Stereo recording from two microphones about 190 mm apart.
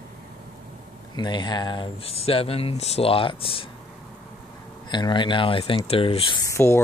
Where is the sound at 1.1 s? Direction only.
25° left (ahead or behind).